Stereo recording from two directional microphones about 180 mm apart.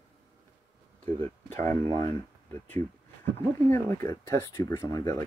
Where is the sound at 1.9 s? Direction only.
15° left (ahead or behind).